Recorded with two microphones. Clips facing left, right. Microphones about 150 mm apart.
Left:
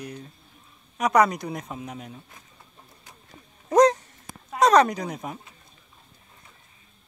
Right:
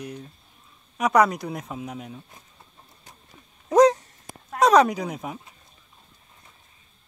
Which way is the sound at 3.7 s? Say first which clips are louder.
Right 1 dB; 5° right (ahead or behind).